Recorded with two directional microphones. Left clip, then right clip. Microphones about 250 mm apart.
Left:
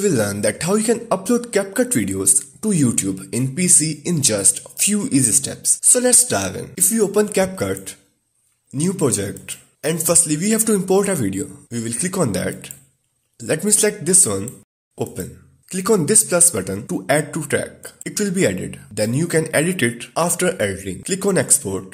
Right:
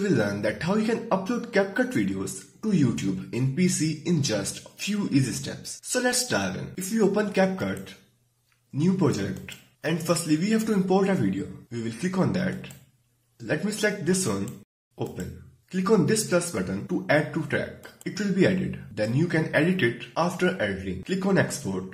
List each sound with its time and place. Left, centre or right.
0.0 s speech: left
15.7 s speech: left